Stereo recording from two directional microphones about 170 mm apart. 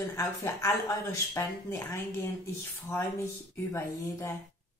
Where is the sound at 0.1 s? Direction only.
20° left (ahead or behind).